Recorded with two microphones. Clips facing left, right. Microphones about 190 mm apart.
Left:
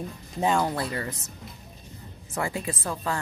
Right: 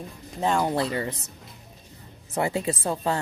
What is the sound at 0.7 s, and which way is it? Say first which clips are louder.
Speech: right 4 dB; 25° right (ahead or behind).